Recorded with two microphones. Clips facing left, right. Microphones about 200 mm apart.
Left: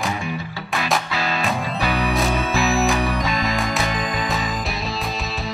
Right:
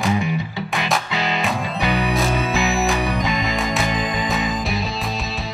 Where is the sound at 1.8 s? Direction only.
20° right (ahead or behind).